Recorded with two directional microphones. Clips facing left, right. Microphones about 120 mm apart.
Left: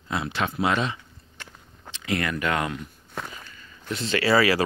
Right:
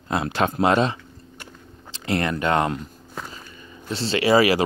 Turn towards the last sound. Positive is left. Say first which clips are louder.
# right 3 dB
turn(degrees=-20)  # may be behind; listen again after turning